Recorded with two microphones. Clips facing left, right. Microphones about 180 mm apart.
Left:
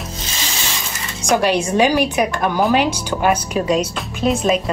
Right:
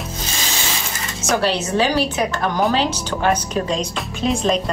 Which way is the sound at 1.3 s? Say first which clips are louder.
Left 3 dB; 15° left (ahead or behind).